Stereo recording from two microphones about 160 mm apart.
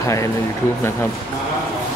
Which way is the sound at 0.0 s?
20° left (ahead or behind).